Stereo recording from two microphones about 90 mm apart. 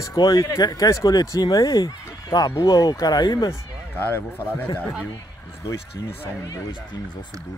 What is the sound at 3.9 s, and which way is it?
Speech, 25° left (ahead or behind).